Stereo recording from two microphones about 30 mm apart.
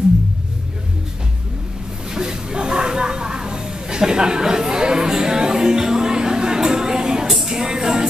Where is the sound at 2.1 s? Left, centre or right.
Right.